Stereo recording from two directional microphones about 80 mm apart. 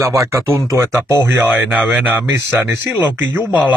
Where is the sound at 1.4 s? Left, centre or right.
Centre.